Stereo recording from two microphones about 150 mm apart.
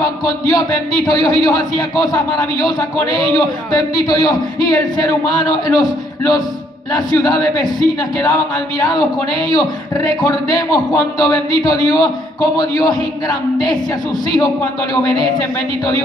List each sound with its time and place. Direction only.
0.0 s a man's voice: 25° left (ahead or behind)